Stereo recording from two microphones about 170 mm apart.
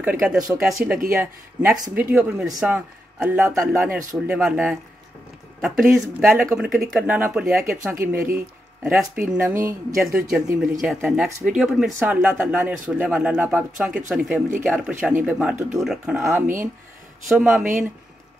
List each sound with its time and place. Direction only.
0.0 s speech: 5° right (ahead or behind)
5.9 s speech: 5° right (ahead or behind)
7.8 s speech: 15° right (ahead or behind)
16.2 s speech: 15° right (ahead or behind)
17.3 s speech: 5° right (ahead or behind)